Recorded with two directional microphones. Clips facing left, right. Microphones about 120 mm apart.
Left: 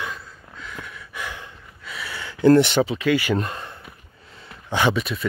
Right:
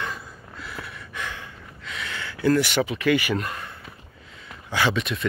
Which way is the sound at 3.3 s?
25° left (ahead or behind).